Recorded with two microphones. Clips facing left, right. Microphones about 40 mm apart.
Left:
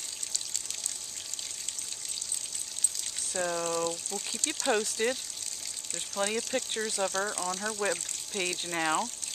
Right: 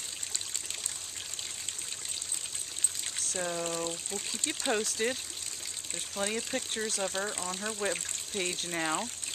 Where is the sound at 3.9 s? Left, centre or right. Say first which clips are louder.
Left 2 dB; right.